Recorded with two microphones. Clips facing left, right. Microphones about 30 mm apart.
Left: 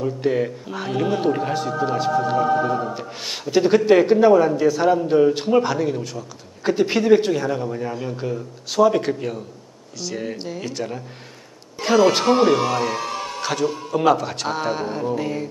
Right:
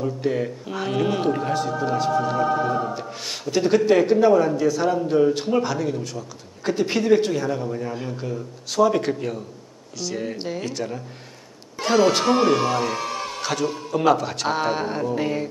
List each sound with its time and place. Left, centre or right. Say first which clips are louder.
0.0 s speech: left 3 dB; centre
0.7 s speech: even; centre
1.3 s speech: left 1 dB; centre
7.9 s speech: left 3 dB; centre
12.0 s speech: left 2 dB; centre
12.4 s speech: left 1 dB; centre
15.1 s music: right 1 dB; centre